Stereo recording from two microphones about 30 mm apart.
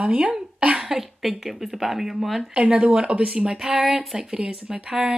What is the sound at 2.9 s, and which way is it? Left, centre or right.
Speech, right.